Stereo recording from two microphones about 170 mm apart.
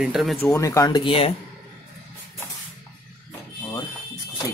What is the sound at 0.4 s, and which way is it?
Speech, 20° left (ahead or behind).